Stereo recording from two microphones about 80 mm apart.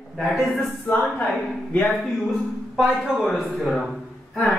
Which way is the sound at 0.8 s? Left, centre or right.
Centre.